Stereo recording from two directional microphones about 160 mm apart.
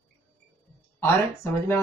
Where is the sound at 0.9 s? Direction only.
15° left (ahead or behind).